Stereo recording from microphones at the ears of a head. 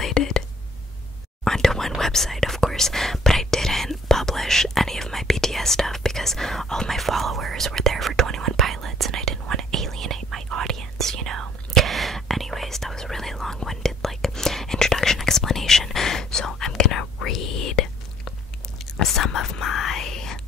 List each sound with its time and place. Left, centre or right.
0.0 s whispering: left
1.6 s whispering: centre
7.2 s whispering: right
12.3 s whispering: centre
15.3 s whispering: left